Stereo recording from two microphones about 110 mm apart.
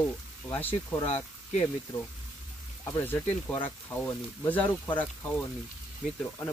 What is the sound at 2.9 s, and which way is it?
Speech, 25° left (ahead or behind).